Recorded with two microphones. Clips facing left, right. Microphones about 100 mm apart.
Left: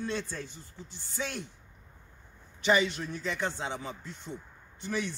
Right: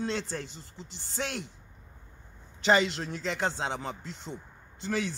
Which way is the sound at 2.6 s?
90° right.